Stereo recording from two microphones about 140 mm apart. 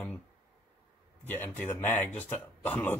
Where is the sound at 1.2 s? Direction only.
15° left (ahead or behind).